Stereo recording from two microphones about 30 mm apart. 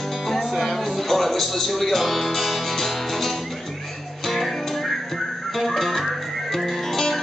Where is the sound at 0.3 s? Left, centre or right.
Centre.